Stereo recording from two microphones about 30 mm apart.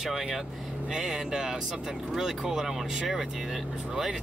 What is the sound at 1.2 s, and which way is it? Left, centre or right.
Speech, centre.